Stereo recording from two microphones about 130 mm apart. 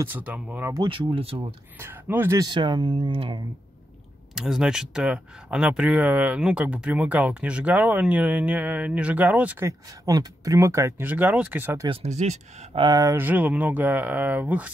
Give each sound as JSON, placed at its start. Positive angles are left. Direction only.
{"t": 0.0, "sound": "speech", "side_deg": -15}
{"t": 0.7, "sound": "speech", "side_deg": -40}
{"t": 1.8, "sound": "speech", "side_deg": -15}
{"t": 2.4, "sound": "speech", "side_deg": -35}
{"t": 4.4, "sound": "speech", "side_deg": -5}
{"t": 9.7, "sound": "speech", "side_deg": -25}
{"t": 11.9, "sound": "speech", "side_deg": -55}
{"t": 12.7, "sound": "speech", "side_deg": -35}
{"t": 13.0, "sound": "speech", "side_deg": -15}